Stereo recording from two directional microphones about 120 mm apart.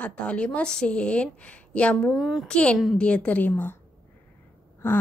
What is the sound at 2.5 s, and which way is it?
A woman's voice, 10° left (ahead or behind).